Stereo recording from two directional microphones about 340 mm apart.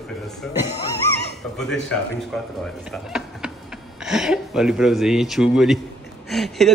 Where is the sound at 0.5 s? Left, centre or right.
Centre.